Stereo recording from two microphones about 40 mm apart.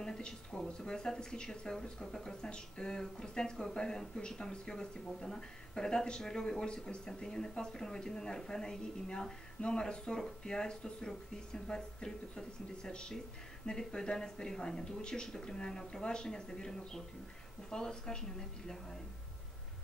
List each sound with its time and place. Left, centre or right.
0.0 s speech: centre